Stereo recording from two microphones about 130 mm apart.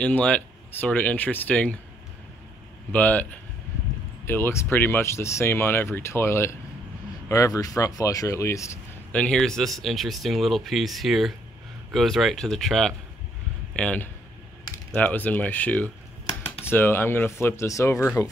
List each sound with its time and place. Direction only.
0.0 s speech: 10° left (ahead or behind)
2.9 s speech: 10° left (ahead or behind)
4.3 s speech: 20° left (ahead or behind)
9.1 s speech: 10° left (ahead or behind); by 18.0 s 25° left (ahead or behind)